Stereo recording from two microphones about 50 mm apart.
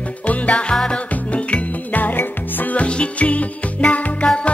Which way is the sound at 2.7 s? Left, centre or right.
Left.